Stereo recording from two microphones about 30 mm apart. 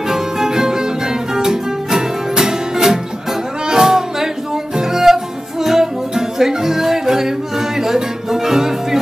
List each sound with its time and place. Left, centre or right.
0.1 s music: centre